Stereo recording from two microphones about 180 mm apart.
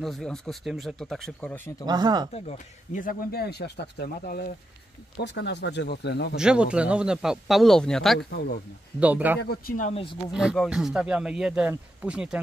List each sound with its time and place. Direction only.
0.0 s speech: centre (ahead or behind)
1.9 s speech: 25° right (ahead or behind)
2.3 s speech: 40° left (ahead or behind); by 4.5 s 55° left (ahead or behind)
5.2 s speech: 75° left (ahead or behind)
6.3 s speech: 5° right (ahead or behind)
8.3 s speech: 65° left (ahead or behind)
9.0 s speech: 10° right (ahead or behind)
9.4 s speech: 55° left (ahead or behind)
10.3 s speech: centre (ahead or behind)